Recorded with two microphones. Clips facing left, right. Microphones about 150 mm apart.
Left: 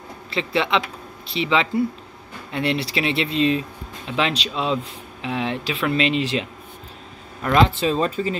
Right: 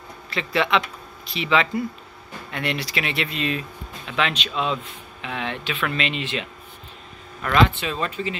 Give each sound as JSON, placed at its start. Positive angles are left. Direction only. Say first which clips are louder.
{"t": 0.3, "sound": "speech", "louder": "left 1 dB", "side_deg": 25}
{"t": 7.4, "sound": "speech", "louder": "left 2 dB", "side_deg": 35}